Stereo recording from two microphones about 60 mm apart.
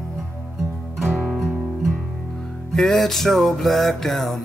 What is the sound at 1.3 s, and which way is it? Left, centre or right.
Music, centre.